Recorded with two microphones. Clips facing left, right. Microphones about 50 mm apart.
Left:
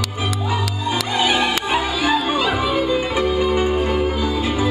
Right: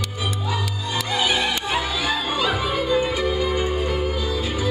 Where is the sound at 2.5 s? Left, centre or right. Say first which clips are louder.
Left 3 dB; left.